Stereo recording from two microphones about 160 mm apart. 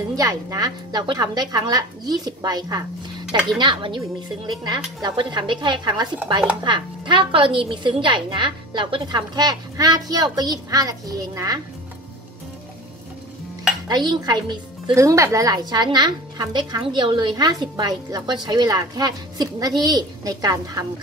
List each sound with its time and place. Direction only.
0.1 s a woman's voice: 20° right (ahead or behind)
5.0 s a woman's voice: 30° right (ahead or behind)
13.8 s a woman's voice: 25° right (ahead or behind)